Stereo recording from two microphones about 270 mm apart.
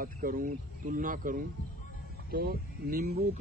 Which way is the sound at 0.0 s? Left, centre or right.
Right.